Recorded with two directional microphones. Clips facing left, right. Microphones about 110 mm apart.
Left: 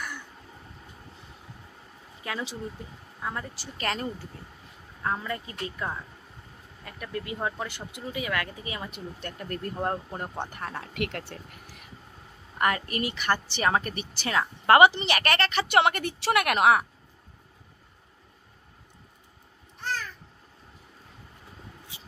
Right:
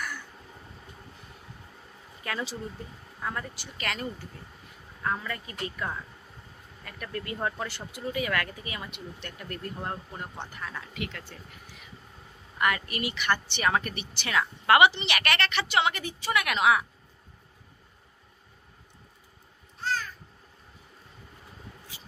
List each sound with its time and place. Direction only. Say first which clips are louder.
2.2 s speech: even; 15° left (ahead or behind)
3.5 s a woman's voice: left 3 dB; 35° left (ahead or behind)
5.0 s speech: left 1 dB; 20° left (ahead or behind)
8.9 s a woman's voice: left 3 dB; 40° left (ahead or behind); by 11.3 s 60° left (ahead or behind)
11.6 s vehicle: left 1 dB; 50° left (ahead or behind)
12.5 s a woman's voice: left 2 dB; 35° left (ahead or behind)
15.7 s a woman's voice: left 6 dB; 55° left (ahead or behind)